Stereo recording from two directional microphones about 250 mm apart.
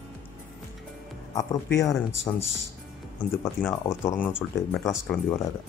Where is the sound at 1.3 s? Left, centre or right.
Centre.